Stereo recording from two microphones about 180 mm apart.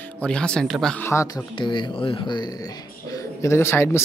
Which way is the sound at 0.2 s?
5° left (ahead or behind).